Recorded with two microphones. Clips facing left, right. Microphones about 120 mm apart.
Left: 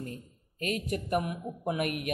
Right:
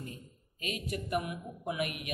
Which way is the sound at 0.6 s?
50° left (ahead or behind).